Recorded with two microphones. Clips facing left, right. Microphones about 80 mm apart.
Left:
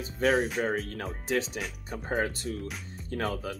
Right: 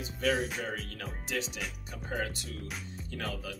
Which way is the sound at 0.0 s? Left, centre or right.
Left.